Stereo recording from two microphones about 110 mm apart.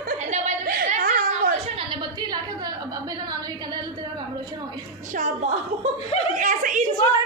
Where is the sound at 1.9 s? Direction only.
40° right (ahead or behind).